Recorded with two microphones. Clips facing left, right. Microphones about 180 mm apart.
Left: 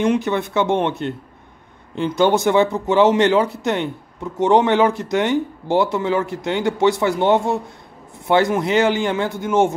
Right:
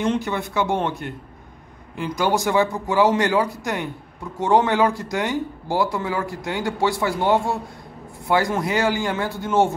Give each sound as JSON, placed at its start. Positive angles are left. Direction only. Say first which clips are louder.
{"t": 0.0, "sound": "speech", "louder": "left 4 dB", "side_deg": 20}